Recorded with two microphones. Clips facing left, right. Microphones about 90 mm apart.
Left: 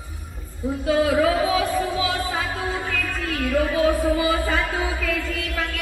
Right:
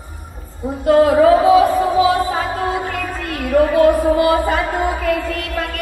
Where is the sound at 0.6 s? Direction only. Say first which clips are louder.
Right 8 dB; 55° right (ahead or behind).